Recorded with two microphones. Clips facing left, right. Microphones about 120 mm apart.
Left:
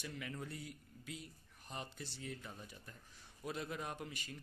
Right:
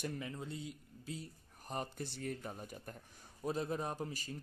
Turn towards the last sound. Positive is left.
turn(degrees=-35)  # may be behind; listen again after turning